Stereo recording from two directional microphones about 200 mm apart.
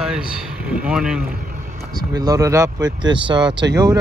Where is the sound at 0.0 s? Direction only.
5° right (ahead or behind).